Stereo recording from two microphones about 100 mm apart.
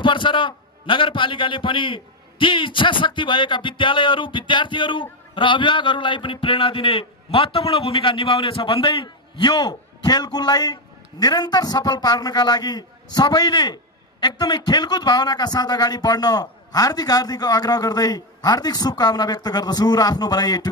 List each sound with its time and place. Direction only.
0.0 s a man's voice: 55° left (ahead or behind)